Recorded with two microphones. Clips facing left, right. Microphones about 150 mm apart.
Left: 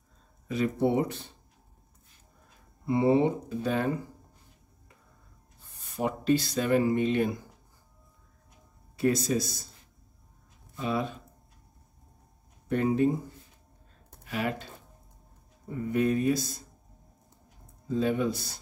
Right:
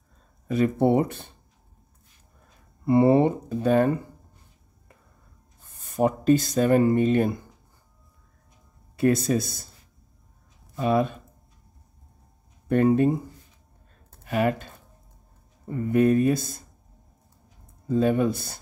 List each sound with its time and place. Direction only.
0.5 s speech: 50° right (ahead or behind)
2.8 s speech: 60° right (ahead or behind)
5.6 s speech: 45° right (ahead or behind)
8.9 s speech: 55° right (ahead or behind)
10.8 s speech: 55° right (ahead or behind)
12.6 s speech: 55° right (ahead or behind)
14.2 s speech: 50° right (ahead or behind)
15.9 s speech: 50° right (ahead or behind)
17.8 s speech: 50° right (ahead or behind)